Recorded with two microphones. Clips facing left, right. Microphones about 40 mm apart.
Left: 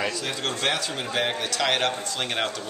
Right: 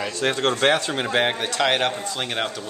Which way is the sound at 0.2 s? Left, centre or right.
Right.